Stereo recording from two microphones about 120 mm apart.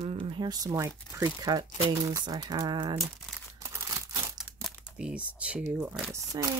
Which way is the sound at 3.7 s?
25° right (ahead or behind).